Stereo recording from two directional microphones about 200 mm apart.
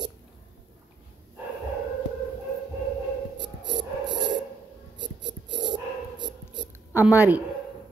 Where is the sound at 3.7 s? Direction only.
60° right (ahead or behind).